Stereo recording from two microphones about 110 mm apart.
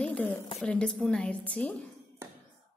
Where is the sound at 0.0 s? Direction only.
15° left (ahead or behind).